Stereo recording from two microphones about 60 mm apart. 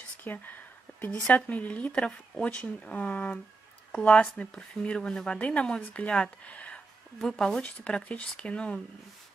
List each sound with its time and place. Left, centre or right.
0.2 s speech: left
7.2 s speech: centre
7.6 s speech: left